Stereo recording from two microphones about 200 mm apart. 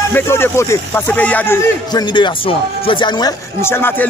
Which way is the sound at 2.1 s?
25° left (ahead or behind).